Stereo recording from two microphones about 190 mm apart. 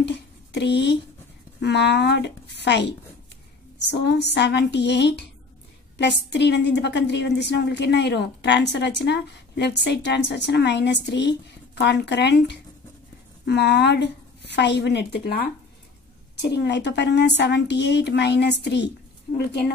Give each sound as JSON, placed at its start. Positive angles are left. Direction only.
{"t": 0.0, "sound": "a woman's voice", "side_deg": 65}